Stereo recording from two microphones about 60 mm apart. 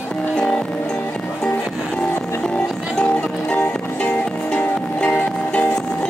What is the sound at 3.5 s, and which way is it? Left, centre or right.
Music, left.